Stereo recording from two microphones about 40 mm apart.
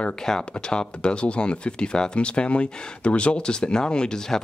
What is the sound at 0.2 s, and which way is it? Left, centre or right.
Speech, centre.